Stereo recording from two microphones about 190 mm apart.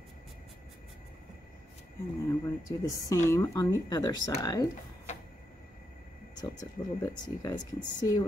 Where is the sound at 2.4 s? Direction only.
20° left (ahead or behind).